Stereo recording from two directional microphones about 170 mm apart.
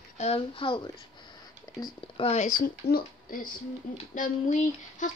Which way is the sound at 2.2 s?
40° left (ahead or behind).